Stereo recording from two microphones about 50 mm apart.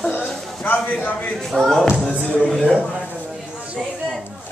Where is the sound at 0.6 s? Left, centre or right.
Left.